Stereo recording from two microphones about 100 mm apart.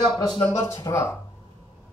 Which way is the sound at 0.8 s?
25° left (ahead or behind).